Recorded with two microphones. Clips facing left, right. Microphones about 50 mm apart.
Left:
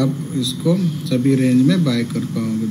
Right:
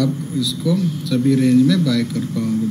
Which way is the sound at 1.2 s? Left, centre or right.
Centre.